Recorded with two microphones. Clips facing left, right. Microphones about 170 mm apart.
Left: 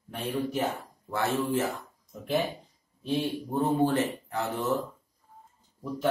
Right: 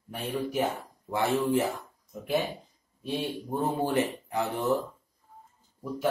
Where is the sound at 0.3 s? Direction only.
10° right (ahead or behind).